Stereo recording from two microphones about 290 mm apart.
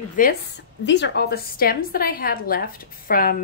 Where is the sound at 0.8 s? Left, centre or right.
Left.